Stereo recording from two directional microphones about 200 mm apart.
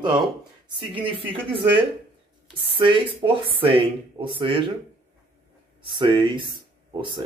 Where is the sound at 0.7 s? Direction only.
25° right (ahead or behind).